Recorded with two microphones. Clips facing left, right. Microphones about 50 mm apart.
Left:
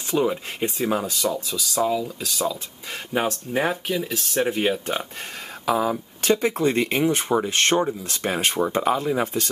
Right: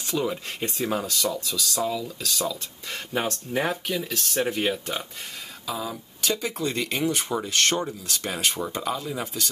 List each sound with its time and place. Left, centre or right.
0.1 s speech: centre
5.7 s speech: left